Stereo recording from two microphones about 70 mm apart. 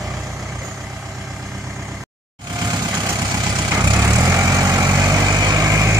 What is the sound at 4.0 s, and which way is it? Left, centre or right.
Vehicle, right.